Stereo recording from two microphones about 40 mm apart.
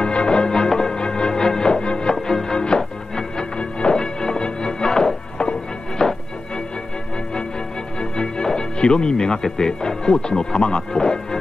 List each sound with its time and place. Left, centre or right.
0.0 s music: left
2.1 s music: centre
8.0 s speech: centre